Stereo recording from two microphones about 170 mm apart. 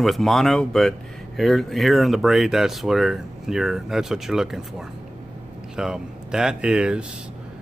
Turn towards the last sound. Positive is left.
turn(degrees=-5)  # may be behind; listen again after turning